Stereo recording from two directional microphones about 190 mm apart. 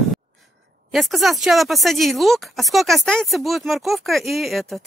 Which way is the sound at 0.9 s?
Centre (ahead or behind).